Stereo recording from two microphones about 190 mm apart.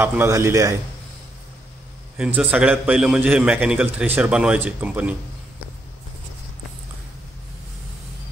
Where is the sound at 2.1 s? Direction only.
5° right (ahead or behind).